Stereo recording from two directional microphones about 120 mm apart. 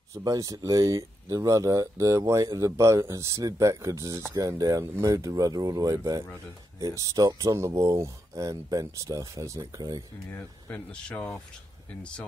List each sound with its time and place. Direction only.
0.1 s speech: 30° right (ahead or behind)
10.3 s speech: 10° left (ahead or behind)